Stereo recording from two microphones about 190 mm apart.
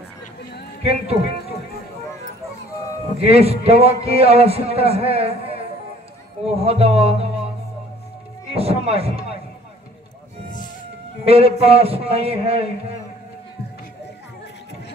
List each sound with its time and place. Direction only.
0.8 s a man's voice: 30° right (ahead or behind)
3.2 s a man's voice: 30° right (ahead or behind)
8.5 s a man's voice: 30° right (ahead or behind)
11.2 s a man's voice: 30° right (ahead or behind)